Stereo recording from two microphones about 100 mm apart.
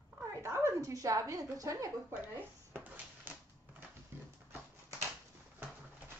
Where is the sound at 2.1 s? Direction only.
20° right (ahead or behind).